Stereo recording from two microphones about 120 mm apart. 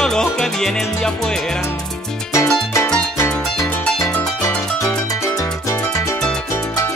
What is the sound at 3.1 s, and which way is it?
Music, 25° left (ahead or behind).